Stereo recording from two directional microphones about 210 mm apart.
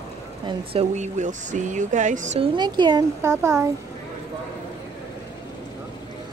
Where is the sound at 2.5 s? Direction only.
20° right (ahead or behind).